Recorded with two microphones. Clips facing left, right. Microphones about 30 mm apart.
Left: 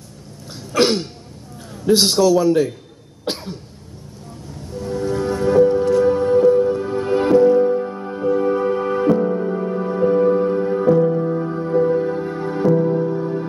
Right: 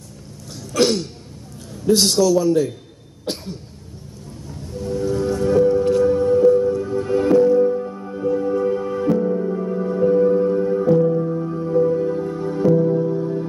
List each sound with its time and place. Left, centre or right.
0.5 s cough: left
1.9 s a man's voice: left
4.8 s music: left
11.2 s music: left
11.6 s music: left